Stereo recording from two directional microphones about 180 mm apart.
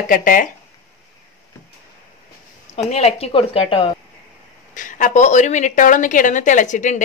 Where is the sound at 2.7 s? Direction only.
35° left (ahead or behind).